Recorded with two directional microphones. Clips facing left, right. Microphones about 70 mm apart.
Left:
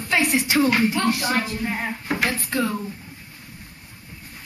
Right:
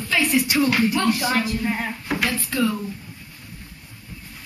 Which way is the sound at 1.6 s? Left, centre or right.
Centre.